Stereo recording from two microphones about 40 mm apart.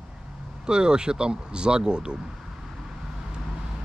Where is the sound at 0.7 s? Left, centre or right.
Right.